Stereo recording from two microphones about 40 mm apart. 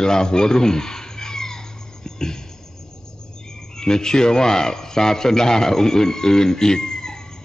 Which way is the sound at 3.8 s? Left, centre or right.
Centre.